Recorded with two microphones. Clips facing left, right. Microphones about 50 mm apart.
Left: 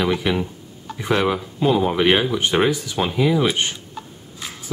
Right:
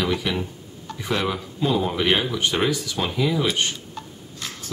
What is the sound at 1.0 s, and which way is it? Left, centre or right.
Speech, left.